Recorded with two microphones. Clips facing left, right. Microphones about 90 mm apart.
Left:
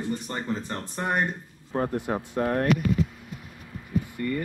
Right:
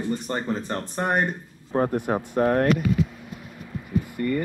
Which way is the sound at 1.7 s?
60° right (ahead or behind).